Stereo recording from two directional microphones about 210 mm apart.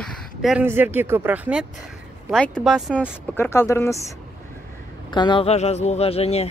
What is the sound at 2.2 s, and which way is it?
Speech, 5° left (ahead or behind).